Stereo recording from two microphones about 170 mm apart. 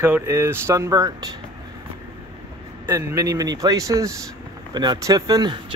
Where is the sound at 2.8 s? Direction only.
15° right (ahead or behind).